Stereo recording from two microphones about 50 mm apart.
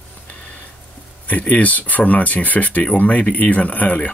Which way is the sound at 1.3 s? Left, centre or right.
Left.